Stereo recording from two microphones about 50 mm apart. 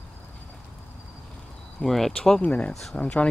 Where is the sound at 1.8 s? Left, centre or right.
Centre.